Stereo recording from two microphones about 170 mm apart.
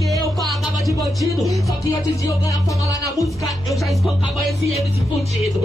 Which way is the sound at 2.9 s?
20° left (ahead or behind).